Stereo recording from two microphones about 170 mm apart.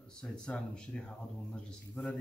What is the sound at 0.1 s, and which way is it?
Speech, 5° left (ahead or behind).